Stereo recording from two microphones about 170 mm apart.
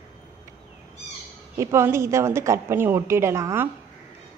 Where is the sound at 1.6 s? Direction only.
15° right (ahead or behind).